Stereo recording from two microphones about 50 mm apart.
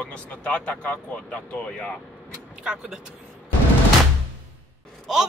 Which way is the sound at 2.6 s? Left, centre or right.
Right.